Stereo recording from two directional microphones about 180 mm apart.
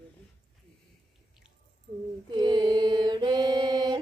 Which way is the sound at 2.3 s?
25° right (ahead or behind).